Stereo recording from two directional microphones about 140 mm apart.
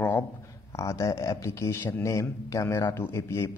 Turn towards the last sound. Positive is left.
turn(degrees=20)  # may be behind; listen again after turning